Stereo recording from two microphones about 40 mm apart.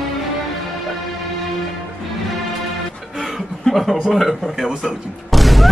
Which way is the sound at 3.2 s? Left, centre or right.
Centre.